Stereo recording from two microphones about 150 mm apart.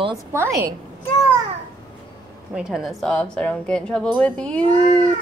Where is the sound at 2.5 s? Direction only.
5° right (ahead or behind).